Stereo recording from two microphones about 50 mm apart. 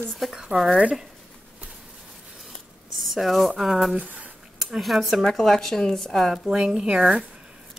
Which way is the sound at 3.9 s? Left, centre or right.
Right.